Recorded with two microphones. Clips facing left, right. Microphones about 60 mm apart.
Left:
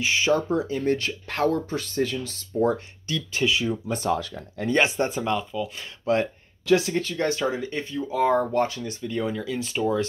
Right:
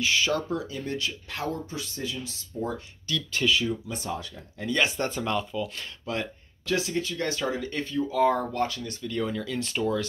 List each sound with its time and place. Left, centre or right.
0.0 s speech: left
3.1 s speech: centre
3.9 s speech: left
4.6 s speech: left
4.9 s speech: centre
6.9 s speech: left
7.4 s speech: centre